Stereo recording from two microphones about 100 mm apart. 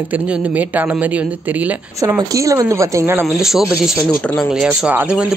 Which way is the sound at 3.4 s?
5° right (ahead or behind).